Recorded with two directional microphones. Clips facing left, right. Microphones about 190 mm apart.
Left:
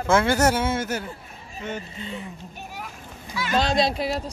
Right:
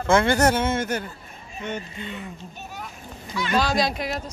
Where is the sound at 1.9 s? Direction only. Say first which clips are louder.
Even; 30° left (ahead or behind).